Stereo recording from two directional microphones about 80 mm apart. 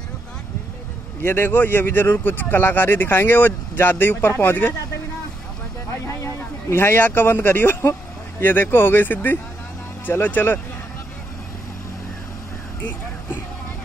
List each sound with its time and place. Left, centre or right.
1.2 s speech: left
6.0 s speech: left